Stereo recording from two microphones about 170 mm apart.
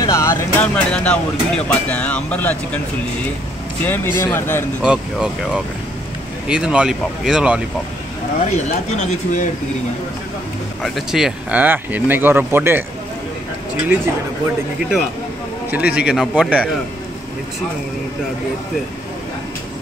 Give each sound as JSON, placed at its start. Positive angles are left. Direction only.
{"t": 0.0, "sound": "speech", "side_deg": 15}
{"t": 3.8, "sound": "speech", "side_deg": 10}
{"t": 4.8, "sound": "speech", "side_deg": -5}
{"t": 8.5, "sound": "speech", "side_deg": 40}
{"t": 10.8, "sound": "speech", "side_deg": 0}
{"t": 14.8, "sound": "speech", "side_deg": -5}